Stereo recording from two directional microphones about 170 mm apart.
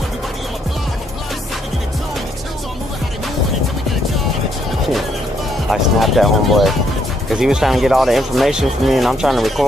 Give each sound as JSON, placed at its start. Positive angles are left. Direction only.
{"t": 5.7, "sound": "speech", "side_deg": 0}